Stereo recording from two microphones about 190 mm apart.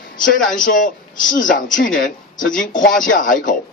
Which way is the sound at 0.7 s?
45° left (ahead or behind).